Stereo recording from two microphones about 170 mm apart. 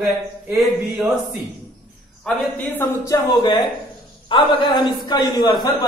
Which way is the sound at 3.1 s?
25° left (ahead or behind).